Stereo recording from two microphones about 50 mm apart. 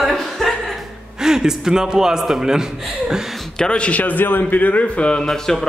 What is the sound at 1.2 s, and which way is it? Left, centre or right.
A man's voice, centre.